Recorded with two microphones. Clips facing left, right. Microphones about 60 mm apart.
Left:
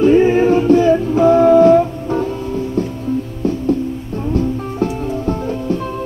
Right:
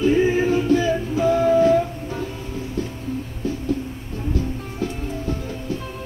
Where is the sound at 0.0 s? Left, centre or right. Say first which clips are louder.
Left 7 dB; left.